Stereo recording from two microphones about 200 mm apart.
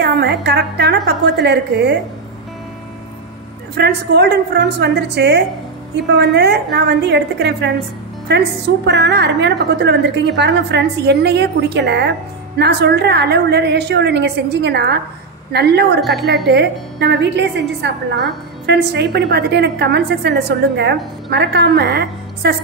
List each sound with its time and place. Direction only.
0.0 s a woman's voice: 55° right (ahead or behind)
3.7 s a woman's voice: 55° right (ahead or behind)